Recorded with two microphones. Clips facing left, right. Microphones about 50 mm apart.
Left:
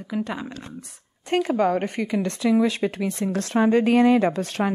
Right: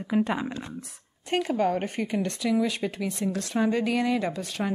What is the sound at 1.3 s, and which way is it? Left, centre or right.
Speech, left.